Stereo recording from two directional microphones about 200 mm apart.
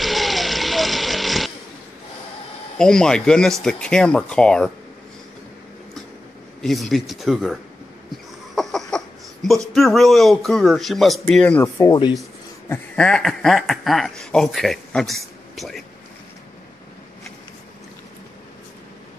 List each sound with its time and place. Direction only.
0.0 s a sound: centre (ahead or behind)
2.8 s speech: 5° left (ahead or behind)
6.6 s speech: centre (ahead or behind)
8.5 s a sound: centre (ahead or behind)
9.8 s speech: centre (ahead or behind)
11.8 s speech: 20° left (ahead or behind)
12.6 s speech: 5° left (ahead or behind)